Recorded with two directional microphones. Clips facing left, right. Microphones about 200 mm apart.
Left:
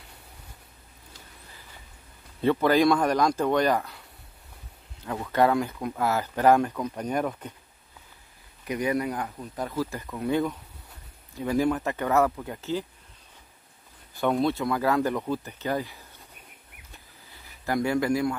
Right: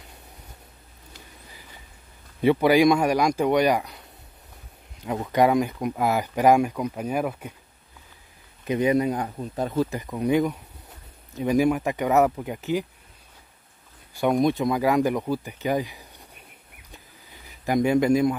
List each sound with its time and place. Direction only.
2.4 s speech: 15° right (ahead or behind)
5.0 s speech: 15° right (ahead or behind)
8.6 s speech: 25° right (ahead or behind)
14.2 s speech: 15° right (ahead or behind)
16.9 s a sound: 20° right (ahead or behind)